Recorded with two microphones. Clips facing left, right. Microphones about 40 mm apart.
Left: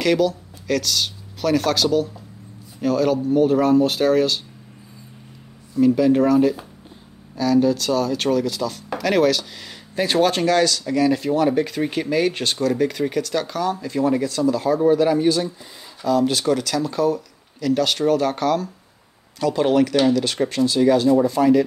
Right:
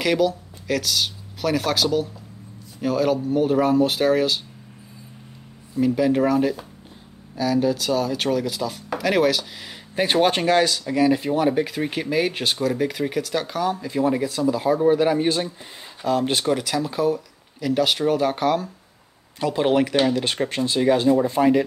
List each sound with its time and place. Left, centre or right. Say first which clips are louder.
0.0 s speech: left 2 dB; centre
5.8 s speech: left 3 dB; centre
9.9 s speech: left 1 dB; right
16.4 s speech: left 2 dB; centre